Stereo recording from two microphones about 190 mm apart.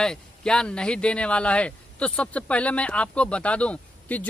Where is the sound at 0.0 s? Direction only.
5° left (ahead or behind).